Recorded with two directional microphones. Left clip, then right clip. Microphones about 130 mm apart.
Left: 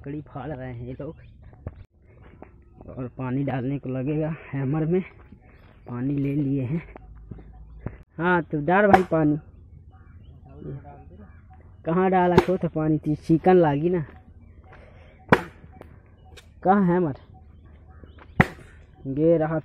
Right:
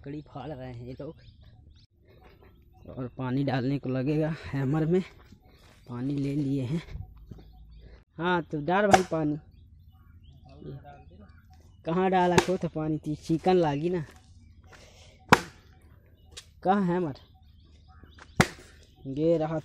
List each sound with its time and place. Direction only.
0.0 s speech: 20° right (ahead or behind)
3.0 s speech: 50° right (ahead or behind)
5.9 s speech: 30° right (ahead or behind)
7.9 s a sound: 15° right (ahead or behind)
8.5 s speech: 15° right (ahead or behind)
9.1 s speech: centre (ahead or behind)
11.8 s speech: 25° right (ahead or behind)
12.7 s speech: 10° right (ahead or behind)
16.3 s speech: 10° right (ahead or behind)
19.0 s speech: 20° right (ahead or behind)